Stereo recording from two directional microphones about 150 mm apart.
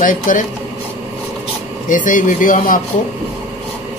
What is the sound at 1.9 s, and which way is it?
Speech, 60° left (ahead or behind).